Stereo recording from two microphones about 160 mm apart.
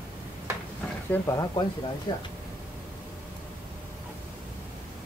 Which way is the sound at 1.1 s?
20° left (ahead or behind).